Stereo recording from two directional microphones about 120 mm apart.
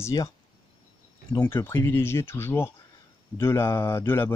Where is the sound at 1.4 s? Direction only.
20° left (ahead or behind).